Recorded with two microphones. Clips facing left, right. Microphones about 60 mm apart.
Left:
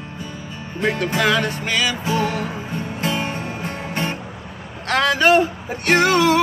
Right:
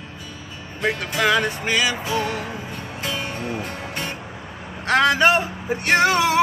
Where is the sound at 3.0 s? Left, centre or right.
Left.